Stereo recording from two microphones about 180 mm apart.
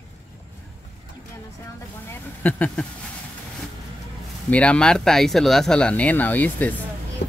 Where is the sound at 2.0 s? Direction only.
10° left (ahead or behind).